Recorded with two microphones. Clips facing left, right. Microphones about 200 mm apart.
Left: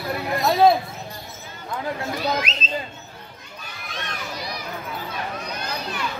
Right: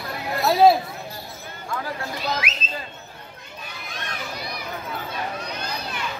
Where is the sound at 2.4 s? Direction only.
10° right (ahead or behind).